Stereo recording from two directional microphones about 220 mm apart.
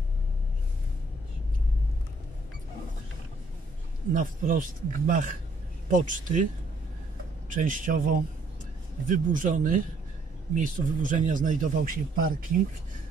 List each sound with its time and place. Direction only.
4.1 s speech: 35° right (ahead or behind)
7.4 s speech: 35° right (ahead or behind)